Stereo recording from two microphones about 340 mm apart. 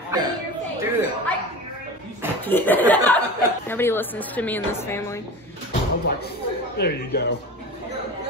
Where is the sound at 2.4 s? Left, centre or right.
Centre.